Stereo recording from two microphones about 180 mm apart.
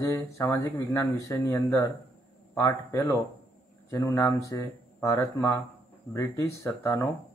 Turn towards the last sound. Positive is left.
turn(degrees=15)  # may be behind; listen again after turning